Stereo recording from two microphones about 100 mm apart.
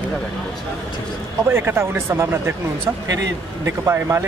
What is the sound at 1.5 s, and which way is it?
Speech, 25° right (ahead or behind).